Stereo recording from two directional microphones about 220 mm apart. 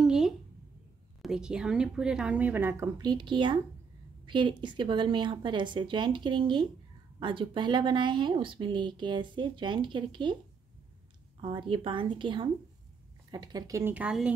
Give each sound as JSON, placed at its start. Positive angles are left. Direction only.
{"t": 0.0, "sound": "a sound", "side_deg": 0}
{"t": 1.2, "sound": "speech", "side_deg": -5}
{"t": 11.7, "sound": "speech", "side_deg": -25}